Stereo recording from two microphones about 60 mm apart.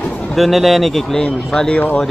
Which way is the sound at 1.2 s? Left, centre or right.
Centre.